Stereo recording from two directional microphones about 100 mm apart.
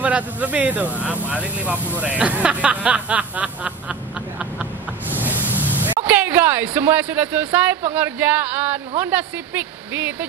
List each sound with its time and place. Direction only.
0.0 s speech: 15° right (ahead or behind)
5.1 s speech: 20° right (ahead or behind)